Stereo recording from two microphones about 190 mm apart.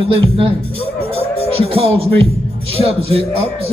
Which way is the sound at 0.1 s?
30° right (ahead or behind).